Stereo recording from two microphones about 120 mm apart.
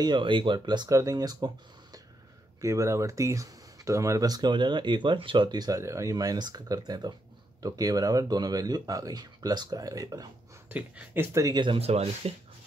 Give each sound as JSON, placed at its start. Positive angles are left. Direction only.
{"t": 0.0, "sound": "speech", "side_deg": -40}
{"t": 10.7, "sound": "speech", "side_deg": -10}
{"t": 11.3, "sound": "speech", "side_deg": -35}
{"t": 11.8, "sound": "speech", "side_deg": -60}